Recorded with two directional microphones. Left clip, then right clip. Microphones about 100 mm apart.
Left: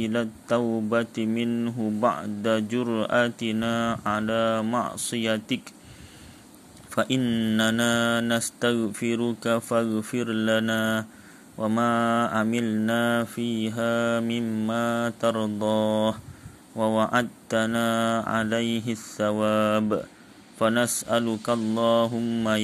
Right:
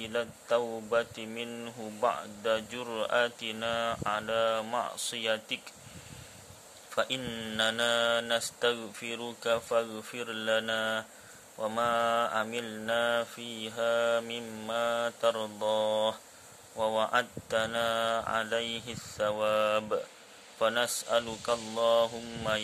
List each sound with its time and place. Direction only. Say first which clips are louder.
0.0 s speech: left 6 dB; 40° left (ahead or behind)
6.9 s speech: left 6 dB; 40° left (ahead or behind)
7.6 s speech: left 2 dB; 40° left (ahead or behind)